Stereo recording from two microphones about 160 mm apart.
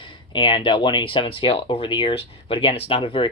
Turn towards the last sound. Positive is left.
turn(degrees=35)  # may be behind; listen again after turning